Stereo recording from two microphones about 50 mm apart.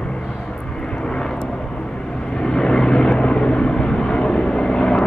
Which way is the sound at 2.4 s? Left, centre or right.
Centre.